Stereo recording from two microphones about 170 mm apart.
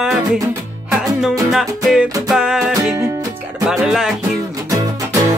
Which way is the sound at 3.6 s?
5° right (ahead or behind).